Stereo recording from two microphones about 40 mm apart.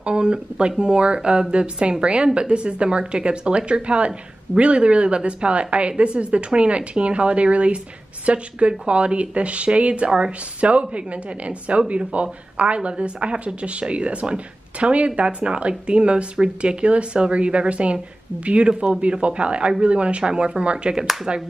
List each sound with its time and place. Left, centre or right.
0.0 s speech: right